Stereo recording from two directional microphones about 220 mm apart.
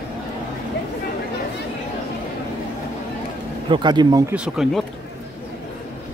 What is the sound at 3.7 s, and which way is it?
Speech, 20° right (ahead or behind).